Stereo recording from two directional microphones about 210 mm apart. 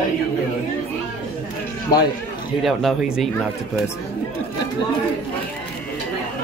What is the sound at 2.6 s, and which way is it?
Speech, centre (ahead or behind).